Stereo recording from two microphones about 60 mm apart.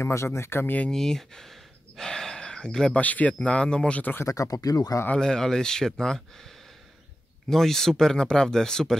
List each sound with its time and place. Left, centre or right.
0.0 s speech: left
0.9 s gasp: centre
3.0 s speech: left
4.2 s speech: left
5.2 s speech: centre
7.4 s speech: centre